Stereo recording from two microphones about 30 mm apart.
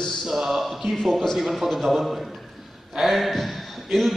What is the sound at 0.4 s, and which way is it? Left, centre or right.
A man's voice, centre.